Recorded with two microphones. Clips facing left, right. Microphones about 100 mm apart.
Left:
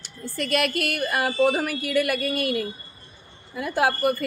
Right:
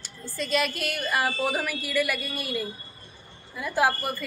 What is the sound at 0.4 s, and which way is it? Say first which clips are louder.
A woman's voice: left 3 dB; 65° left (ahead or behind).